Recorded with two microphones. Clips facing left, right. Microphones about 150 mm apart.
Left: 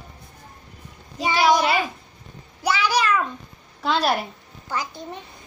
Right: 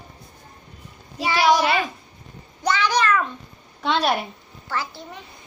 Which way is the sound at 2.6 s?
10° left (ahead or behind).